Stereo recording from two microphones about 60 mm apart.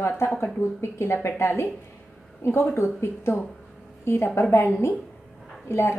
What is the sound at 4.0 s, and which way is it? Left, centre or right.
A woman's voice, left.